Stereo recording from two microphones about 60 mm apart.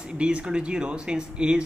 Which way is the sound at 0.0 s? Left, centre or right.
Centre.